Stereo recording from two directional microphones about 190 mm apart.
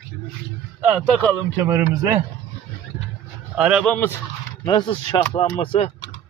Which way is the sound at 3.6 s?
5° right (ahead or behind).